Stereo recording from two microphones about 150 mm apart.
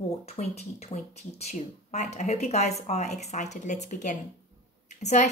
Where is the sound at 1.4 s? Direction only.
50° left (ahead or behind).